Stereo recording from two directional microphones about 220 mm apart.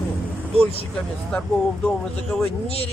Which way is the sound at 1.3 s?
5° left (ahead or behind).